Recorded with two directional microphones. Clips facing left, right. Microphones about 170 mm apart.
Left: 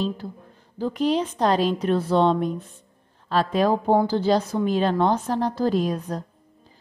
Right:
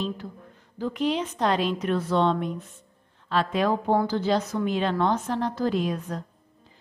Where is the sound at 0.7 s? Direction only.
35° left (ahead or behind).